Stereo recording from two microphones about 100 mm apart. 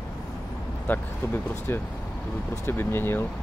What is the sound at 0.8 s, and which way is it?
Speech, 20° left (ahead or behind).